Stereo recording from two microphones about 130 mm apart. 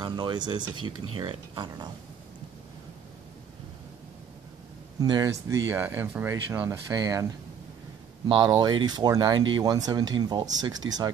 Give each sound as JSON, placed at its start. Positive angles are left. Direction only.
{"t": 0.0, "sound": "speech", "side_deg": -35}
{"t": 5.0, "sound": "speech", "side_deg": -30}